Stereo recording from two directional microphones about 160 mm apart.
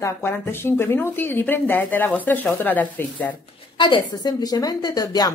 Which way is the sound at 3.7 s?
30° left (ahead or behind).